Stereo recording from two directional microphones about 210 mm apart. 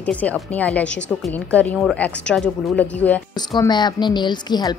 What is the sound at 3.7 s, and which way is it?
A woman's voice, 20° left (ahead or behind).